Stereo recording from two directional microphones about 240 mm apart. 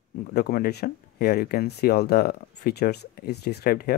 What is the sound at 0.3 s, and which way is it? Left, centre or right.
Speech, left.